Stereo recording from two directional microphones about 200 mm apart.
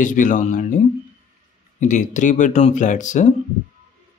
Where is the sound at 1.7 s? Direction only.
40° left (ahead or behind).